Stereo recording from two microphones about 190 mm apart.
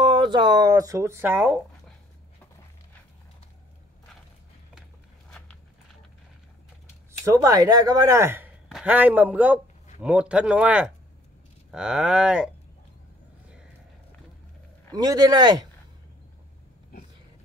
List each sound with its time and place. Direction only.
0.0 s speech: 25° right (ahead or behind)
7.1 s speech: 15° right (ahead or behind)
15.0 s a man's voice: 20° right (ahead or behind)